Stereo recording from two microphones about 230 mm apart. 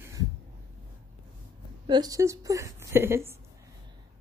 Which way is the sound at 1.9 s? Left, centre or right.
Centre.